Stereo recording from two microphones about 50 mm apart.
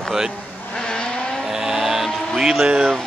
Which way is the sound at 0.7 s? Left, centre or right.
Centre.